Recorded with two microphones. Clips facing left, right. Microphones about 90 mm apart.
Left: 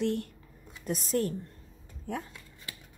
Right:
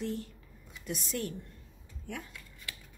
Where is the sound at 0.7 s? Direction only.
40° left (ahead or behind).